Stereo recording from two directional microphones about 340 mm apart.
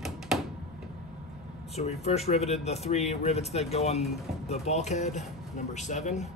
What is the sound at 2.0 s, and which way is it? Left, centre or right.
Speech, centre.